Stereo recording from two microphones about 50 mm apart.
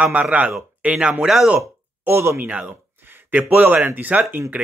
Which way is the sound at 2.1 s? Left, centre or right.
Right.